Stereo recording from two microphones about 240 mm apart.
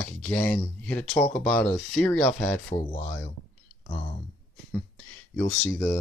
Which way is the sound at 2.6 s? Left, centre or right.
Left.